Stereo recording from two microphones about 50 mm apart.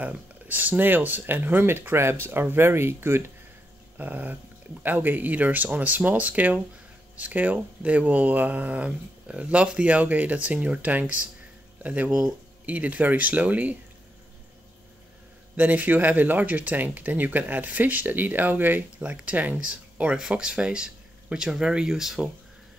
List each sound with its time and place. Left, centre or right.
0.0 s speech: right
4.0 s speech: right
15.5 s speech: right; by 22.3 s centre